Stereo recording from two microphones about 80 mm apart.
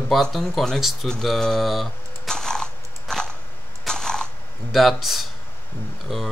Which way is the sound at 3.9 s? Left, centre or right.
Centre.